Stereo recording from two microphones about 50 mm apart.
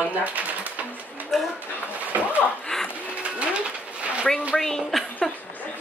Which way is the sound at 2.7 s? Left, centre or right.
Centre.